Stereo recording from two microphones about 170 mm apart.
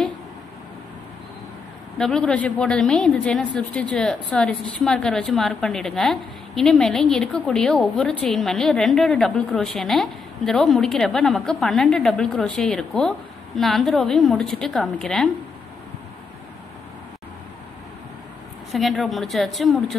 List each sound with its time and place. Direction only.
2.0 s a woman's voice: 5° left (ahead or behind)
18.7 s a woman's voice: centre (ahead or behind)